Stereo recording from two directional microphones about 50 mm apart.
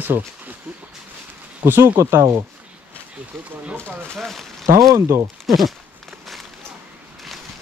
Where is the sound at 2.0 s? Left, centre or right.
Right.